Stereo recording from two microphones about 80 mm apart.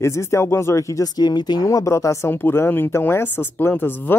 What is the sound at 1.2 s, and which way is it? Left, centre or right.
Speech, left.